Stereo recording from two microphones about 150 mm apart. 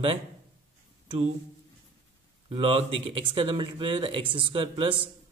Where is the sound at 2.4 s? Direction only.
40° right (ahead or behind).